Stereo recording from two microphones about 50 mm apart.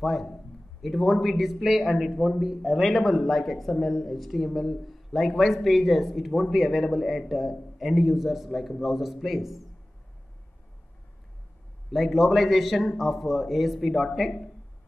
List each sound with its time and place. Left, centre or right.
0.0 s speech: centre
2.4 s speech: centre
2.8 s speech: centre
11.9 s speech: centre